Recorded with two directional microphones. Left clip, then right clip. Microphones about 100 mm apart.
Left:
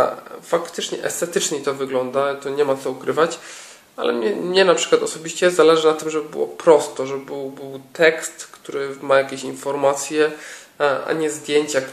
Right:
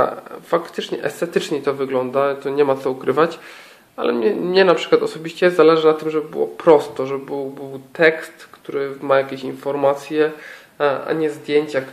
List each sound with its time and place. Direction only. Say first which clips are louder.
0.0 s speech: even; 30° right (ahead or behind); by 11.8 s centre (ahead or behind)